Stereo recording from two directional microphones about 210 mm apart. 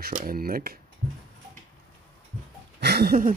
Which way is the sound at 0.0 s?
40° right (ahead or behind).